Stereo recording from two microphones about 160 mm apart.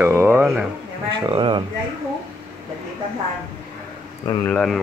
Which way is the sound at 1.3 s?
30° right (ahead or behind).